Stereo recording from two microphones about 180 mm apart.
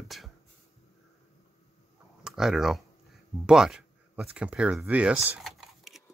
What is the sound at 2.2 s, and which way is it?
Speech, centre (ahead or behind).